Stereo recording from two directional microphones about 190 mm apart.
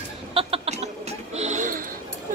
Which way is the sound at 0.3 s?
30° right (ahead or behind).